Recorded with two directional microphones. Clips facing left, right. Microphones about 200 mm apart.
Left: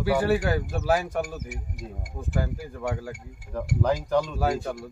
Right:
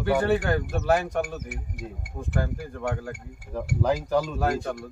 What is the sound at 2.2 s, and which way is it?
Speech, 5° left (ahead or behind).